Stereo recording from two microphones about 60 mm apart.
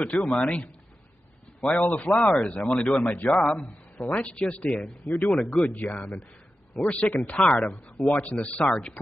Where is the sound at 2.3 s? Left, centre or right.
Centre.